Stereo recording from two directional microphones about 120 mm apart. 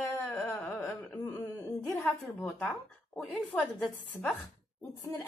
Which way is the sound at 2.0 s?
5° left (ahead or behind).